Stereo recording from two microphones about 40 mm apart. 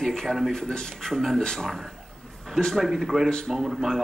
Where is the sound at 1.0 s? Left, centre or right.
Centre.